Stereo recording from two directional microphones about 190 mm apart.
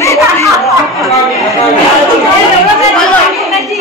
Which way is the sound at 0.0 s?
15° left (ahead or behind).